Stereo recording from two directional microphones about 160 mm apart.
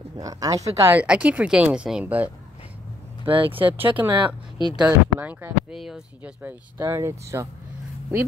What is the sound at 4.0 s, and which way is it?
Speech, 10° right (ahead or behind).